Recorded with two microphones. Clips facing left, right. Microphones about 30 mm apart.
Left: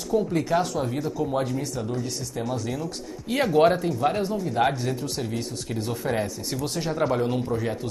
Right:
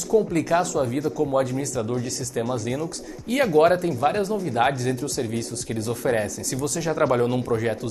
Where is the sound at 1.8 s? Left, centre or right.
Right.